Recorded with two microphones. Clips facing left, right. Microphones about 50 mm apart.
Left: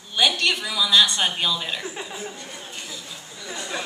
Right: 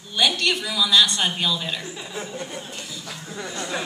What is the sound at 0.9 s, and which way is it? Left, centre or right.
Speech, left.